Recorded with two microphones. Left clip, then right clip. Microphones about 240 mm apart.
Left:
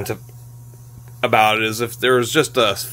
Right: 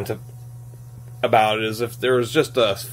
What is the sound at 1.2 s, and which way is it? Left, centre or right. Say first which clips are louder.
Speech: left 2 dB; left.